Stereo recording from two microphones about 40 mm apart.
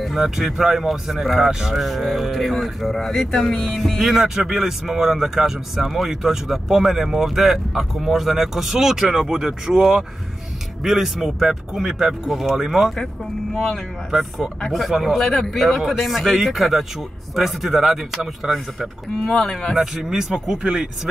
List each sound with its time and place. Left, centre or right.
0.0 s speech: centre
1.8 s speech: centre
3.8 s speech: centre
14.7 s speech: centre
19.2 s speech: centre
19.8 s speech: centre
20.6 s speech: right